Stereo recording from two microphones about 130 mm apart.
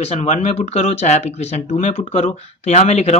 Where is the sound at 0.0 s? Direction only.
55° left (ahead or behind).